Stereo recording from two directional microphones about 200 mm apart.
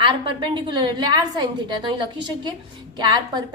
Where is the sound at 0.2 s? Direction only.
25° right (ahead or behind).